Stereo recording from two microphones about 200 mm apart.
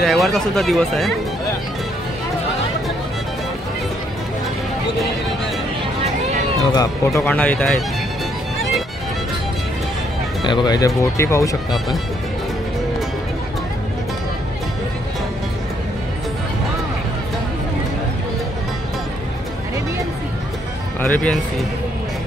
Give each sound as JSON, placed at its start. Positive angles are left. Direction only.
{"t": 0.0, "sound": "speech", "side_deg": 0}
{"t": 6.7, "sound": "speech", "side_deg": 15}
{"t": 10.4, "sound": "speech", "side_deg": 20}
{"t": 21.0, "sound": "speech", "side_deg": 5}